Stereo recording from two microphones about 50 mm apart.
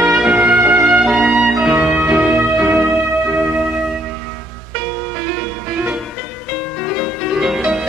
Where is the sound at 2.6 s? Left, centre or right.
Right.